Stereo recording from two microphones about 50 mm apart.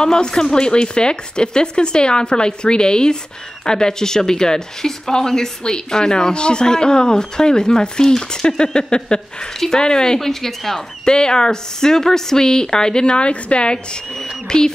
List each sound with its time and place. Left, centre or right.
0.0 s speech: centre
14.1 s speech: centre